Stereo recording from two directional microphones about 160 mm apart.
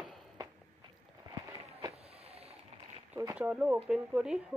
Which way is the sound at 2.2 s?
40° right (ahead or behind).